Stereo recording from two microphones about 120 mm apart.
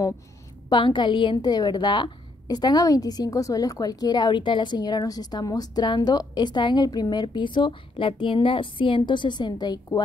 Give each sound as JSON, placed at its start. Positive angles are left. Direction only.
{"t": 0.7, "sound": "a woman's voice", "side_deg": 40}